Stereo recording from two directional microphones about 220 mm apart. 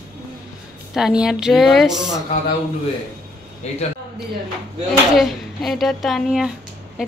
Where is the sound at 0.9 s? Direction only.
5° right (ahead or behind).